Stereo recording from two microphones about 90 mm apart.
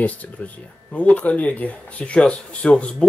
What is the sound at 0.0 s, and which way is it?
Speech, 15° left (ahead or behind).